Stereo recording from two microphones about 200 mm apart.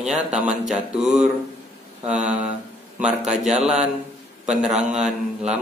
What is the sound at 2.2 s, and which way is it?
Speech, 5° right (ahead or behind).